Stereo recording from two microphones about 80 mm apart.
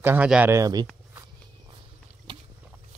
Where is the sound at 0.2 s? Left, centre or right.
Centre.